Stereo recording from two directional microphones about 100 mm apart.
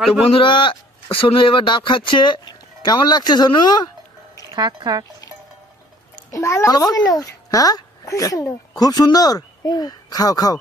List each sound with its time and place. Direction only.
0.0 s a man's voice: centre (ahead or behind)
0.3 s a man's voice: 55° left (ahead or behind)
4.6 s speech: 45° right (ahead or behind)
6.3 s a child's voice: 30° left (ahead or behind)